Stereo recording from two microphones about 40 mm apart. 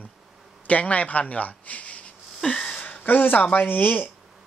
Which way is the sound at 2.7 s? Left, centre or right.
Left.